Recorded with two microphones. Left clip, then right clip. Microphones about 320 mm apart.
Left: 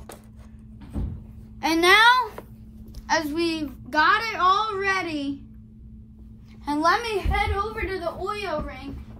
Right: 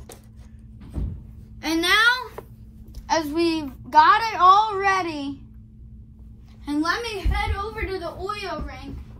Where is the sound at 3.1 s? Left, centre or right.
Centre.